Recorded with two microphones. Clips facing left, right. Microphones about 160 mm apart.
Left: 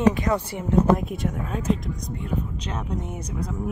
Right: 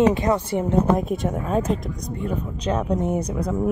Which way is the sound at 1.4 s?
40° right (ahead or behind).